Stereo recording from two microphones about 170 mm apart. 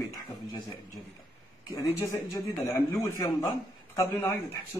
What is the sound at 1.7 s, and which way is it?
A man's voice, 20° left (ahead or behind).